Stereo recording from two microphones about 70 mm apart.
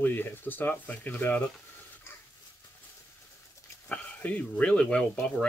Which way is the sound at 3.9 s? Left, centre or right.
Left.